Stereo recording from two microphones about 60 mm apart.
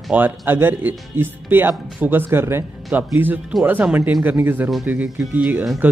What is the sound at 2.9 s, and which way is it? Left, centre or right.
Speech, right.